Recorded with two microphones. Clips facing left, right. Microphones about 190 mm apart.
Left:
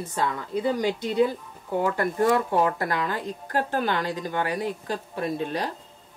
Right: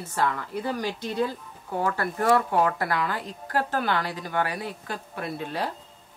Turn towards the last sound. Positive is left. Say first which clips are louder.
# left 3 dB
turn(degrees=15)  # may be behind; listen again after turning